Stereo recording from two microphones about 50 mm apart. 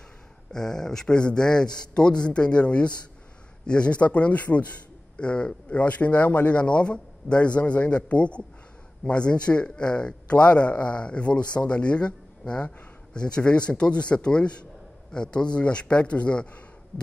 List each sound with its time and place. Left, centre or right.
0.5 s a man's voice: centre